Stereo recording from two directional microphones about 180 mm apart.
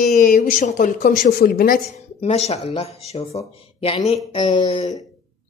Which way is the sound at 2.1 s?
35° left (ahead or behind).